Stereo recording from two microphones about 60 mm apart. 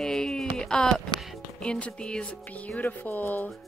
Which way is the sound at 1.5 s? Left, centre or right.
Centre.